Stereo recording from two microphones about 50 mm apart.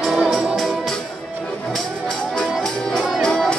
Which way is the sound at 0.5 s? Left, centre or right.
Centre.